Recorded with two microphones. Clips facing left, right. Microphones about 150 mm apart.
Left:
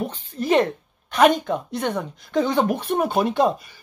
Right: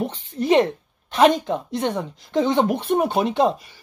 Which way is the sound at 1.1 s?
25° right (ahead or behind).